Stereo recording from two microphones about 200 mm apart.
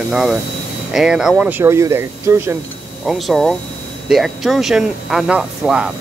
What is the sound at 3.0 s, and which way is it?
Speech, centre (ahead or behind).